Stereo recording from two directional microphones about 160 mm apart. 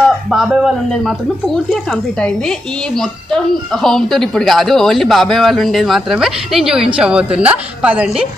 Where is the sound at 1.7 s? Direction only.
5° left (ahead or behind).